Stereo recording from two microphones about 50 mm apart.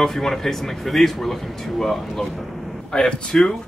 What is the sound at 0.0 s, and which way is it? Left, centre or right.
A man's voice, centre.